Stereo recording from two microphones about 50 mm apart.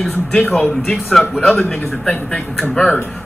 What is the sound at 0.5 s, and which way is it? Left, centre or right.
Speech, centre.